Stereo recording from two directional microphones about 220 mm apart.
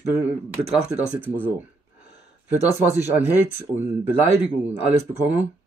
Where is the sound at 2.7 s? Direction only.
15° left (ahead or behind).